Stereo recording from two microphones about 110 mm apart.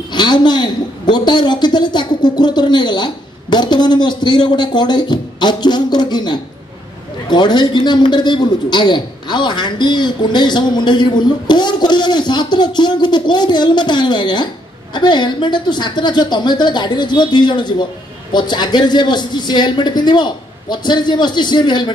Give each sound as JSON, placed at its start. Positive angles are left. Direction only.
{"t": 0.1, "sound": "a man's voice", "side_deg": 40}